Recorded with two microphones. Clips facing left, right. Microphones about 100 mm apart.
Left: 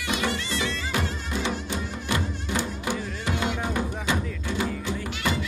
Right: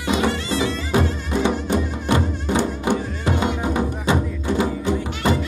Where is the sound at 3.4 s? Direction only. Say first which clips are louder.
Right 4 dB; 25° right (ahead or behind).